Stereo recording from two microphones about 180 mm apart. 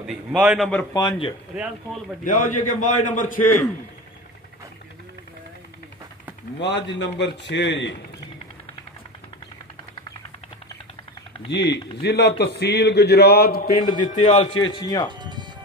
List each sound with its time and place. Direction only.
0.0 s a man's voice: 5° right (ahead or behind)
0.9 s a man's voice: 25° left (ahead or behind)
2.2 s a man's voice: 45° left (ahead or behind)
6.6 s a man's voice: 75° left (ahead or behind)
11.5 s a man's voice: 75° left (ahead or behind)
13.7 s a man's voice: 25° left (ahead or behind)
14.0 s a man's voice: 40° left (ahead or behind)
14.4 s a man's voice: 25° left (ahead or behind)
15.0 s speech: 25° right (ahead or behind)